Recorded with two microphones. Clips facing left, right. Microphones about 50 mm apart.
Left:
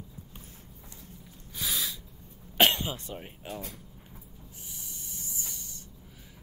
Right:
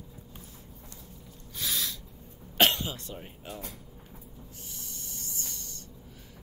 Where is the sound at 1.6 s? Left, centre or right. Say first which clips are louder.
Even; centre.